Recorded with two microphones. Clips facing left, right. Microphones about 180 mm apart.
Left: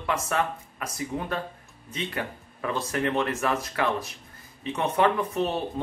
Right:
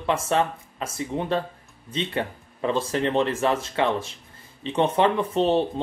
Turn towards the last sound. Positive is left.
turn(degrees=-30)  # may be behind; listen again after turning